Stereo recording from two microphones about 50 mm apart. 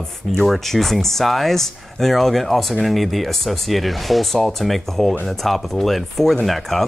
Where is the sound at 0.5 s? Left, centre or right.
Centre.